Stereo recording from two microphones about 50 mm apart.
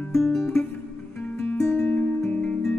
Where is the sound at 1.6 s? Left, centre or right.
Centre.